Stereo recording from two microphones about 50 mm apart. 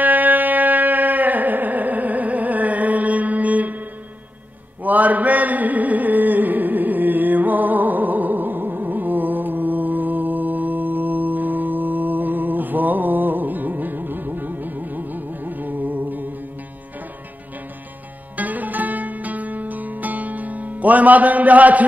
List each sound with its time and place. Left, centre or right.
0.0 s music: right
4.8 s music: right
18.3 s music: right